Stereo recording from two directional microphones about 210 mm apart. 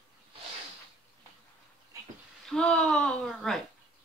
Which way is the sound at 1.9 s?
15° right (ahead or behind).